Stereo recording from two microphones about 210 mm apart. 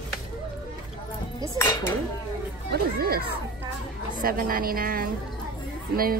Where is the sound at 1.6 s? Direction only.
10° left (ahead or behind).